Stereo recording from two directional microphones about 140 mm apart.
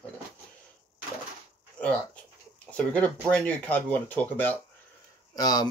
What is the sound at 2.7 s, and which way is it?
Speech, 10° left (ahead or behind).